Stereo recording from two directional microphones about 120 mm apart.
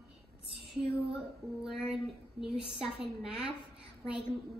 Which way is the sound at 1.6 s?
Centre (ahead or behind).